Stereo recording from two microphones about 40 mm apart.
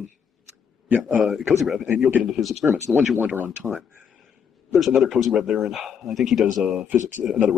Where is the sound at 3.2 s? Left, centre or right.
Right.